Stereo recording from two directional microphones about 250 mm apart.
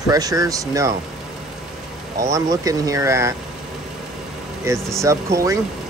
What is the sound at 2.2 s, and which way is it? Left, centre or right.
Speech, centre.